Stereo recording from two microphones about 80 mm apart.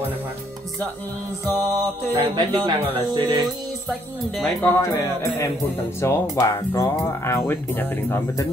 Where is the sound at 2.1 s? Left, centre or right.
Right.